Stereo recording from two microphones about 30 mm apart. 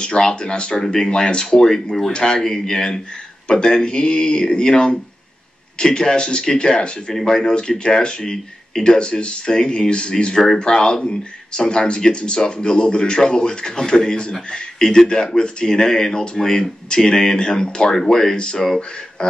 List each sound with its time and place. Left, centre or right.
0.2 s a man's voice: left
0.9 s speech: centre
1.2 s a man's voice: left
2.4 s a man's voice: centre